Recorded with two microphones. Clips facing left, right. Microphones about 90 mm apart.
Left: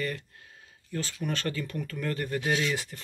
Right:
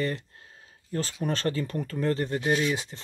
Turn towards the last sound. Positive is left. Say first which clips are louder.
# right 3 dB
turn(degrees=-20)  # may be behind; listen again after turning